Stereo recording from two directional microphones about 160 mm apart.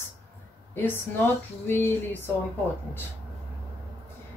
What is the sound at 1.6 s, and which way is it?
Speech, 15° left (ahead or behind).